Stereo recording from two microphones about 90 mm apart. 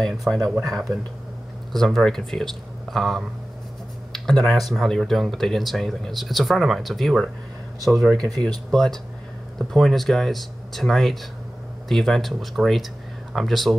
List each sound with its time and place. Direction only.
0.0 s speech: 5° left (ahead or behind)
8.2 s speech: 35° right (ahead or behind)
8.7 s speech: 5° left (ahead or behind)